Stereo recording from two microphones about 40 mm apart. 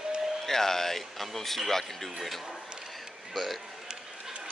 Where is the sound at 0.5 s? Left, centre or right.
Centre.